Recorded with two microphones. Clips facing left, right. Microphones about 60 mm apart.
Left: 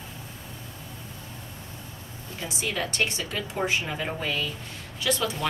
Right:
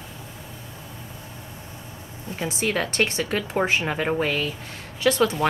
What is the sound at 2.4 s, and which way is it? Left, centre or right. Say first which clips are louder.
A woman's voice: right 5 dB; right.